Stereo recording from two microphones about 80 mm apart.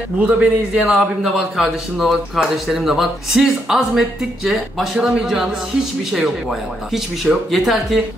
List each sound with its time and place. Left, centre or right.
0.2 s a man's voice: centre
0.8 s a man's voice: centre
6.9 s speech: centre